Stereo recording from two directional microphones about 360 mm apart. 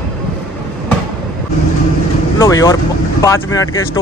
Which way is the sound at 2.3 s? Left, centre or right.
Centre.